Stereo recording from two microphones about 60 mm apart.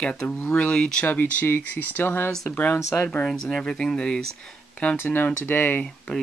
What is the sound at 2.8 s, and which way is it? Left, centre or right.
Speech, left.